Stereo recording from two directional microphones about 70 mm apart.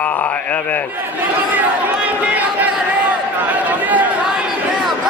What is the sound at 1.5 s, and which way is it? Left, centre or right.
Crowd, centre.